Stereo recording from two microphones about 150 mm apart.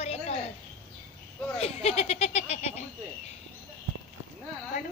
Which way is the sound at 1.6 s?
45° left (ahead or behind).